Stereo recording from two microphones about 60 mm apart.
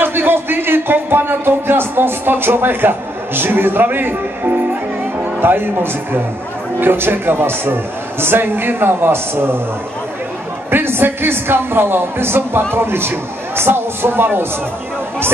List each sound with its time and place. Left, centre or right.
0.0 s a man's voice: right
10.7 s a man's voice: right